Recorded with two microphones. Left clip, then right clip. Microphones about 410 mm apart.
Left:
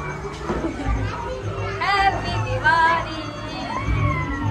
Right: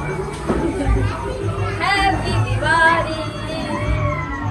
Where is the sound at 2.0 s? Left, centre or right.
Left.